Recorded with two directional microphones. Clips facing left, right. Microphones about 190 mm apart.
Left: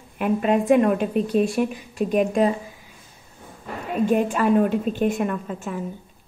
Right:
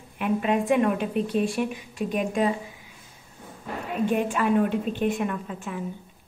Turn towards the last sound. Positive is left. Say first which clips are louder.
# left 4 dB
turn(degrees=45)  # may be behind; listen again after turning